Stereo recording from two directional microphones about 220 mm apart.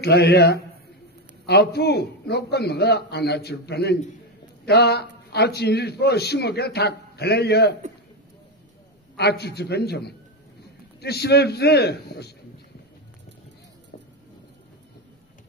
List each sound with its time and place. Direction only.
0.0 s a man's voice: 50° left (ahead or behind)
9.1 s a man's voice: 50° left (ahead or behind)